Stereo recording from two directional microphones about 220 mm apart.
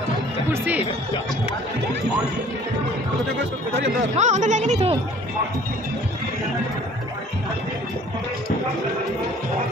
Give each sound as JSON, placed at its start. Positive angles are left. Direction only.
{"t": 0.5, "sound": "speech", "side_deg": -5}
{"t": 4.2, "sound": "speech", "side_deg": -35}